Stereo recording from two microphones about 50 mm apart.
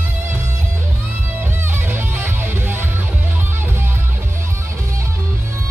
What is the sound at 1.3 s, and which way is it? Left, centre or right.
Music, right.